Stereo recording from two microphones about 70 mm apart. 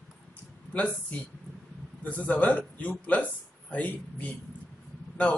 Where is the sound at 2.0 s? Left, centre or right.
Left.